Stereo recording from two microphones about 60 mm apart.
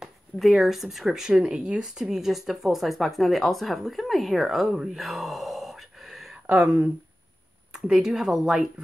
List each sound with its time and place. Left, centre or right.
0.4 s speech: centre
6.5 s speech: centre